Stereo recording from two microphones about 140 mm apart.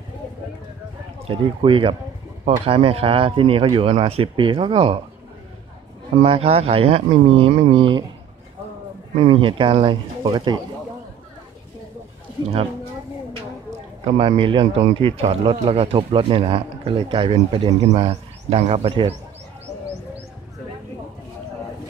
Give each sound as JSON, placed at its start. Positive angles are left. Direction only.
{"t": 1.2, "sound": "speech", "side_deg": -40}
{"t": 6.2, "sound": "speech", "side_deg": -40}
{"t": 9.2, "sound": "speech", "side_deg": -40}
{"t": 14.0, "sound": "speech", "side_deg": -40}